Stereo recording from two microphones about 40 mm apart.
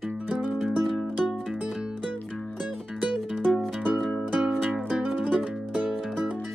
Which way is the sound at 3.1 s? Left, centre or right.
Centre.